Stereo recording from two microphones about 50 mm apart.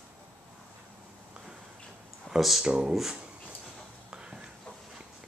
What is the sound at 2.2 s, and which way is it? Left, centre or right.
Speech, centre.